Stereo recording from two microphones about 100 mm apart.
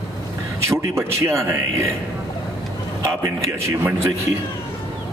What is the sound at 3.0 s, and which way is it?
A man's voice, 25° right (ahead or behind).